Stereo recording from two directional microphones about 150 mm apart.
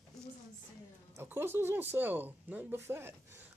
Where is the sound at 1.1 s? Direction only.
15° right (ahead or behind).